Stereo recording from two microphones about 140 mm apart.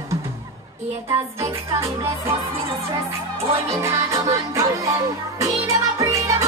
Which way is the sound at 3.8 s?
20° right (ahead or behind).